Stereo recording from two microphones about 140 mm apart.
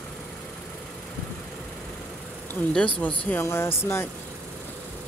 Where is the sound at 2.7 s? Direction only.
10° left (ahead or behind).